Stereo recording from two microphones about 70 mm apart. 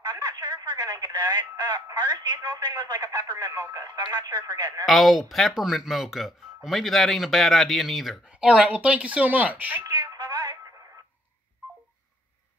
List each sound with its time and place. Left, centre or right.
0.0 s speech: right
4.8 s speech: centre
8.3 s speech: centre
9.8 s a sound: right